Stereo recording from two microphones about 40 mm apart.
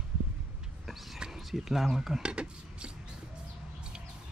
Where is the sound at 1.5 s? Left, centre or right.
Centre.